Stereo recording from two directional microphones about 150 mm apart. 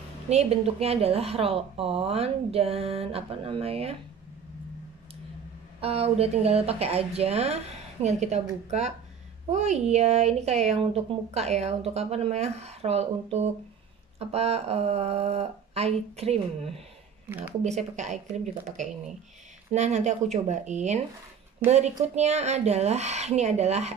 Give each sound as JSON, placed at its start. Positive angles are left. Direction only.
{"t": 0.3, "sound": "speech", "side_deg": -45}
{"t": 5.8, "sound": "a woman's voice", "side_deg": -40}
{"t": 17.3, "sound": "speech", "side_deg": -15}
{"t": 17.6, "sound": "a woman's voice", "side_deg": -50}